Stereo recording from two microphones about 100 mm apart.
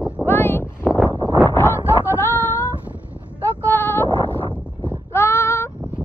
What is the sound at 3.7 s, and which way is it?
Sheep, 20° left (ahead or behind).